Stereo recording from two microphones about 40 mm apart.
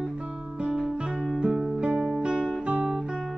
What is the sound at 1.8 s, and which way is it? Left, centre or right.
Music, right.